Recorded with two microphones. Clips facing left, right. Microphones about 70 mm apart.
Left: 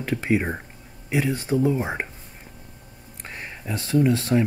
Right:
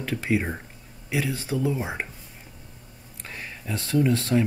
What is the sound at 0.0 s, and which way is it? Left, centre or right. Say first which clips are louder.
Speech: left 3 dB; left.